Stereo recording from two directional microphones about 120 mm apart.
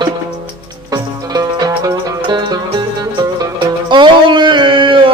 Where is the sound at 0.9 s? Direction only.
35° right (ahead or behind).